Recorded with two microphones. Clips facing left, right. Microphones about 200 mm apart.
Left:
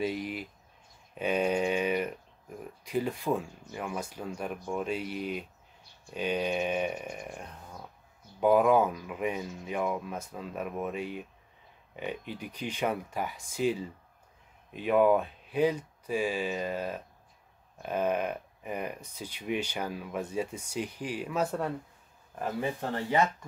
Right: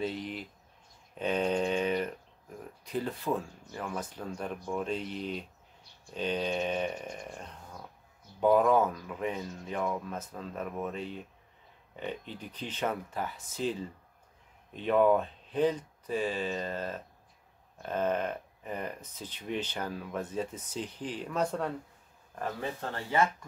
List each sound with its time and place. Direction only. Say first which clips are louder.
0.0 s speech: left 2 dB; 10° left (ahead or behind)
1.1 s a sound: left 1 dB; 10° left (ahead or behind)
2.8 s speech: left 3 dB; 10° left (ahead or behind)